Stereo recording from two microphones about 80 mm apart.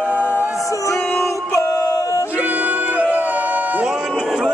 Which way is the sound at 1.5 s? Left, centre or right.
Left.